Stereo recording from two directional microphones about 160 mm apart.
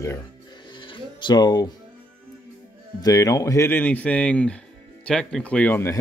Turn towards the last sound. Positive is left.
turn(degrees=15)  # may be behind; listen again after turning